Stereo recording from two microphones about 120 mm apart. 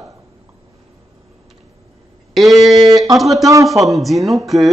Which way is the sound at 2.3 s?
Centre (ahead or behind).